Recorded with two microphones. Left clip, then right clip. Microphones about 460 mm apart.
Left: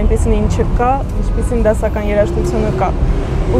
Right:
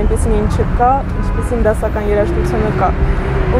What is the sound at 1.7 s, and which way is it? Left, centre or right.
Speech, centre.